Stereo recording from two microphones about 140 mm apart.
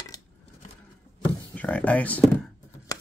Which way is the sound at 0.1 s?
25° left (ahead or behind).